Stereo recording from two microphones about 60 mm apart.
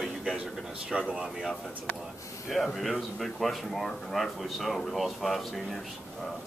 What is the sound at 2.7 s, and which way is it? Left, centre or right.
Speech, centre.